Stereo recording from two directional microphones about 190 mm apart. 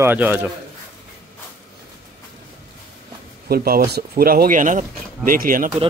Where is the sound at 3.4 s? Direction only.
50° right (ahead or behind).